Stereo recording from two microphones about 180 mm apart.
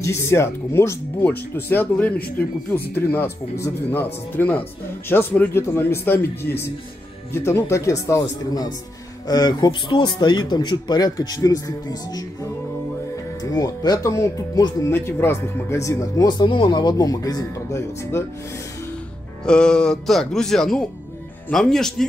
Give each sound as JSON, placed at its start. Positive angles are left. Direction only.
{"t": 0.0, "sound": "speech", "side_deg": 15}
{"t": 13.4, "sound": "speech", "side_deg": 20}
{"t": 19.4, "sound": "speech", "side_deg": 5}